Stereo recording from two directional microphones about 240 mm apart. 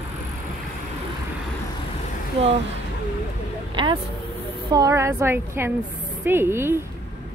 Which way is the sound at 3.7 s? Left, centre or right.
Centre.